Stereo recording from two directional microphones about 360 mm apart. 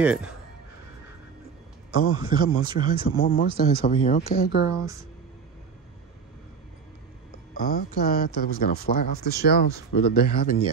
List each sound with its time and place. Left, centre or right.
0.0 s speech: centre
1.9 s speech: left
2.6 s speech: centre
2.9 s speech: left
7.5 s speech: left